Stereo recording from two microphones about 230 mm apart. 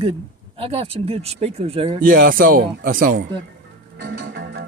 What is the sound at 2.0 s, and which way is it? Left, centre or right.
Speech, right.